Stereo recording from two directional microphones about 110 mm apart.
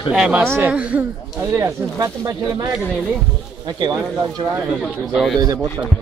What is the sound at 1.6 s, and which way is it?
Speech, 25° right (ahead or behind).